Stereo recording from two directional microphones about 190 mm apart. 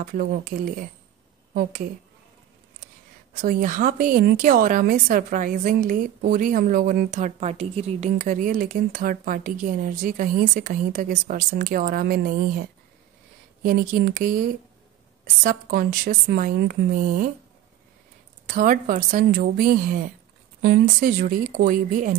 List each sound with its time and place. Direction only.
0.0 s a woman's voice: 45° right (ahead or behind)
3.3 s a woman's voice: 45° right (ahead or behind)
18.5 s a woman's voice: 45° right (ahead or behind)